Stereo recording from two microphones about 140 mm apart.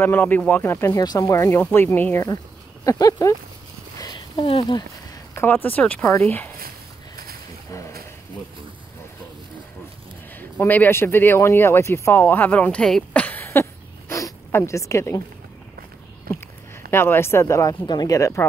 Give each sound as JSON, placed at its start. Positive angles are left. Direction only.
{"t": 0.0, "sound": "speech", "side_deg": 15}
{"t": 1.0, "sound": "a woman's voice", "side_deg": 30}
{"t": 1.6, "sound": "a woman's voice", "side_deg": 15}
{"t": 4.0, "sound": "a sound", "side_deg": 35}
{"t": 5.3, "sound": "speech", "side_deg": 15}
{"t": 7.7, "sound": "a sound", "side_deg": 20}
{"t": 10.3, "sound": "a woman's voice", "side_deg": 15}
{"t": 16.9, "sound": "a woman's voice", "side_deg": 15}